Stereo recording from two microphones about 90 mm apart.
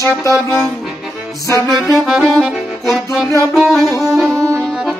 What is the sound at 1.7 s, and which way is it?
Saxophone, centre (ahead or behind).